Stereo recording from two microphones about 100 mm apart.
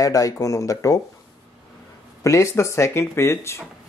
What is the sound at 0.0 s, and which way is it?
Speech, 35° left (ahead or behind).